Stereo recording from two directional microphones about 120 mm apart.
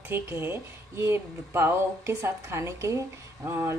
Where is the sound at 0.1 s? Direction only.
20° right (ahead or behind).